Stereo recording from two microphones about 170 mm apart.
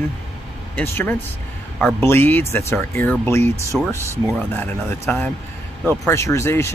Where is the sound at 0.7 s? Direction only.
10° left (ahead or behind).